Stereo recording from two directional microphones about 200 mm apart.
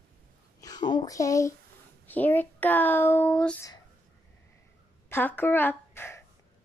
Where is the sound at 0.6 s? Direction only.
20° left (ahead or behind).